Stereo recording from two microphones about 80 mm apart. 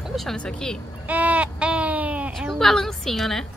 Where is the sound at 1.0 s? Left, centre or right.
Centre.